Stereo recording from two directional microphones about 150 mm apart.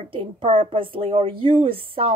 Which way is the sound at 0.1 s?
35° right (ahead or behind).